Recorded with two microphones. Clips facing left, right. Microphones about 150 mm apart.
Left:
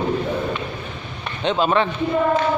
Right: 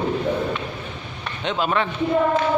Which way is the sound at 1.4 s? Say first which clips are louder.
Left 4 dB; 30° left (ahead or behind).